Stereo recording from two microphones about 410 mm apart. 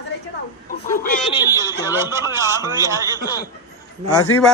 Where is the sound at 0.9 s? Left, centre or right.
Centre.